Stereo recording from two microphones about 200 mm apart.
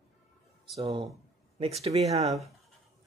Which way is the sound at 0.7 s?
25° right (ahead or behind).